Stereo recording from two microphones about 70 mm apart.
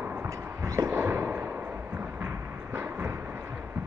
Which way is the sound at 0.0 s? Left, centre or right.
Right.